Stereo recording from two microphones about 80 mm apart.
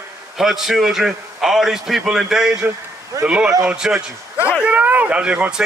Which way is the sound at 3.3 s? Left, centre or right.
Centre.